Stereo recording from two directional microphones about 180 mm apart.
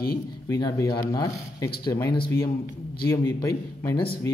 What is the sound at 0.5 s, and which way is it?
Speech, 20° left (ahead or behind).